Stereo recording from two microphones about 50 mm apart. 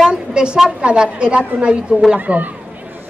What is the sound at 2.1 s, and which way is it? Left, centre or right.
Speech, right.